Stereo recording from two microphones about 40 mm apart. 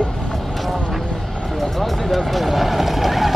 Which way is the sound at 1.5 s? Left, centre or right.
Centre.